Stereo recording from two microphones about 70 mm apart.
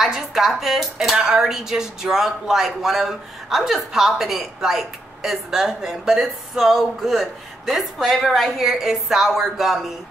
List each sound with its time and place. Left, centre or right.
0.0 s speech: centre